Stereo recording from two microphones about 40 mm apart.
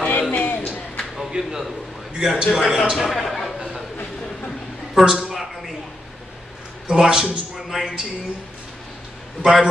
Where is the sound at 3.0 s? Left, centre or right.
Centre.